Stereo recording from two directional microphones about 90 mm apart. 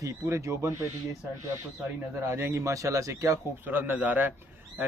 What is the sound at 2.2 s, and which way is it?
A man's voice, 30° right (ahead or behind).